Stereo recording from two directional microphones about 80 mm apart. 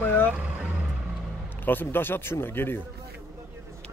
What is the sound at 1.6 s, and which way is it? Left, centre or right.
Speech, left.